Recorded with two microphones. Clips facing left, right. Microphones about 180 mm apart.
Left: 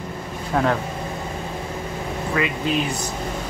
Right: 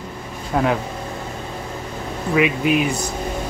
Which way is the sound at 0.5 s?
5° right (ahead or behind).